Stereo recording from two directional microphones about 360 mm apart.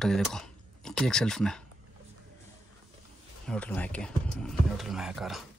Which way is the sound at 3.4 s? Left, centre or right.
Centre.